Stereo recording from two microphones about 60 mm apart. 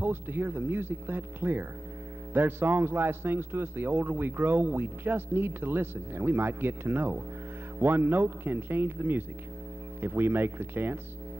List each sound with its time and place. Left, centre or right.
0.0 s a man's voice: right